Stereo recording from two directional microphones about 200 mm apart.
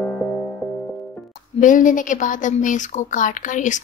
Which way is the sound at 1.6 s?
40° left (ahead or behind).